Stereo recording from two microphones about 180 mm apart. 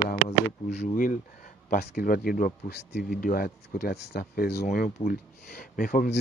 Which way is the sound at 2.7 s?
65° left (ahead or behind).